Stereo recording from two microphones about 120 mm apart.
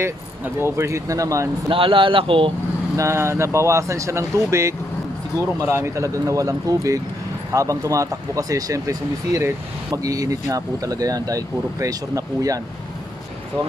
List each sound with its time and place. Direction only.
0.6 s speech: 20° right (ahead or behind)
1.7 s speech: 45° right (ahead or behind)
3.0 s speech: 20° right (ahead or behind)